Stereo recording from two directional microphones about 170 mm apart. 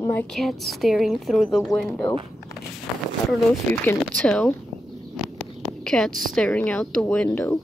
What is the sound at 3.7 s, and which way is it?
Speech, 10° left (ahead or behind).